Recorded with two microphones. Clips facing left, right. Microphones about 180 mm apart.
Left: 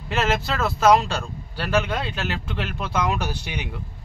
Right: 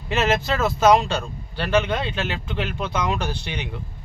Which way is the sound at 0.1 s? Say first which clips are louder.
Right 2 dB; centre (ahead or behind).